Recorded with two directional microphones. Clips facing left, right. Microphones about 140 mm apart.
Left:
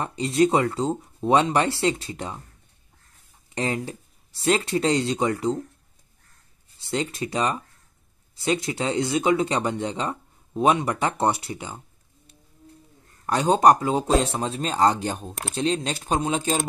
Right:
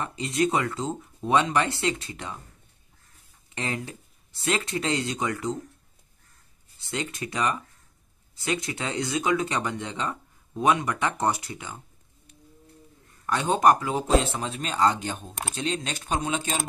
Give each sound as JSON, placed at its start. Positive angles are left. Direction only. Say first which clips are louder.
{"t": 0.0, "sound": "speech", "louder": "left 5 dB", "side_deg": 30}
{"t": 3.5, "sound": "speech", "louder": "left 5 dB", "side_deg": 30}
{"t": 6.9, "sound": "speech", "louder": "left 5 dB", "side_deg": 30}
{"t": 13.3, "sound": "speech", "louder": "left 3 dB", "side_deg": 35}